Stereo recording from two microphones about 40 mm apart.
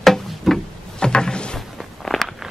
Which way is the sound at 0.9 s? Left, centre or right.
Centre.